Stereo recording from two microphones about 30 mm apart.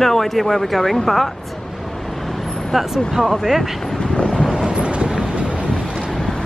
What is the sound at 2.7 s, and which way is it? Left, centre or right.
Speech, centre.